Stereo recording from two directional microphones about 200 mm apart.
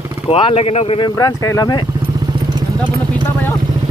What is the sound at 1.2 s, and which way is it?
Speech, 15° left (ahead or behind).